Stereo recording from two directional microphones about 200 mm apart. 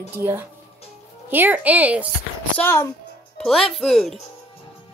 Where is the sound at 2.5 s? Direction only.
10° left (ahead or behind).